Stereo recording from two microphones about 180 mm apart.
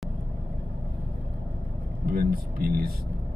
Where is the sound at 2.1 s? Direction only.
60° right (ahead or behind).